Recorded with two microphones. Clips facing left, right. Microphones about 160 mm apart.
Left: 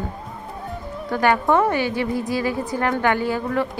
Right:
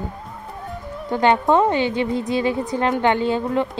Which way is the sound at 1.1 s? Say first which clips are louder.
Right 2 dB; 20° right (ahead or behind).